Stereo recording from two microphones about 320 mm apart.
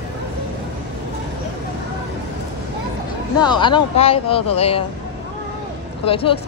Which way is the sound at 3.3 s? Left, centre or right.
Centre.